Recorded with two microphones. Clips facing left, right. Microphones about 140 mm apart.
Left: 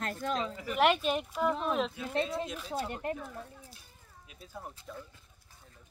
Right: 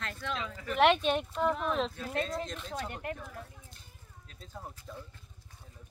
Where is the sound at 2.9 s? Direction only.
30° left (ahead or behind).